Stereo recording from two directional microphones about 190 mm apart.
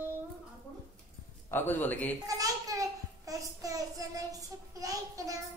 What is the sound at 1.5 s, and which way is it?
Speech, 10° left (ahead or behind).